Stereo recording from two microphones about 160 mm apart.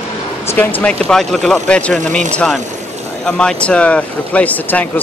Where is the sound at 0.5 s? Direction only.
10° left (ahead or behind).